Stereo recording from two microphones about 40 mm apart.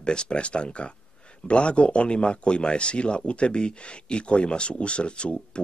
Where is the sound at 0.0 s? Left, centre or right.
Left.